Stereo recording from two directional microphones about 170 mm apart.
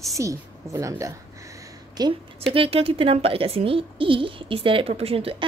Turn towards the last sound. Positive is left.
turn(degrees=-35)  # may be behind; listen again after turning